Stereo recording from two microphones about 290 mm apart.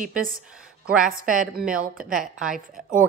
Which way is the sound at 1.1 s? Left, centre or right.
Right.